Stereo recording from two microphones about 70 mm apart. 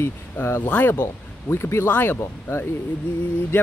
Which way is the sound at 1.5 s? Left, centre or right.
Left.